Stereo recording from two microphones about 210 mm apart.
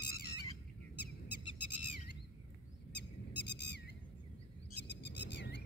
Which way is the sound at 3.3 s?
55° left (ahead or behind).